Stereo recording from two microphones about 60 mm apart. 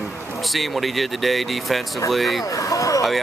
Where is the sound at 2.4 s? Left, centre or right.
Left.